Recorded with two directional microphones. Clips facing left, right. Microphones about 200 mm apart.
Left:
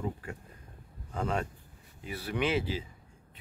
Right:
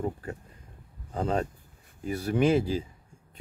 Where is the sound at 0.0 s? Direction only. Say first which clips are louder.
Right 4 dB; 35° right (ahead or behind).